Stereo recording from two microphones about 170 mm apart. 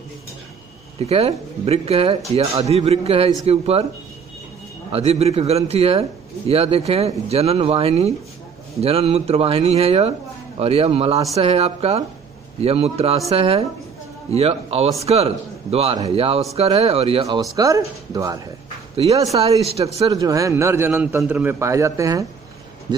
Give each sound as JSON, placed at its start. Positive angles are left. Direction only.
{"t": 0.9, "sound": "a man's voice", "side_deg": -35}
{"t": 4.9, "sound": "a man's voice", "side_deg": -35}
{"t": 17.6, "sound": "speech", "side_deg": -20}
{"t": 19.6, "sound": "a man's voice", "side_deg": -35}
{"t": 20.1, "sound": "a man's voice", "side_deg": -20}